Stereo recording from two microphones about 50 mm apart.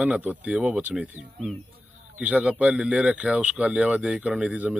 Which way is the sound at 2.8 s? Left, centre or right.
Right.